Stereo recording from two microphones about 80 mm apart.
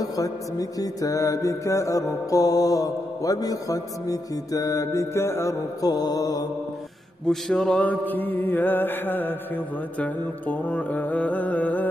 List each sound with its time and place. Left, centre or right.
0.0 s mantra: left
5.9 s mantra: left
7.2 s mantra: centre
7.8 s music: left